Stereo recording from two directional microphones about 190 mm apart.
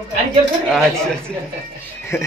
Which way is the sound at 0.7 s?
Centre (ahead or behind).